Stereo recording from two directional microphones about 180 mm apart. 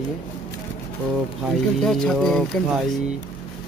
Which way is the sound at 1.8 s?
Centre (ahead or behind).